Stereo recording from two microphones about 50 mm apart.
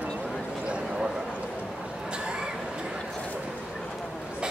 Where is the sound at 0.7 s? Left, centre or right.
Right.